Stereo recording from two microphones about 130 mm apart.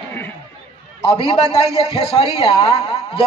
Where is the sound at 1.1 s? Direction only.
40° left (ahead or behind).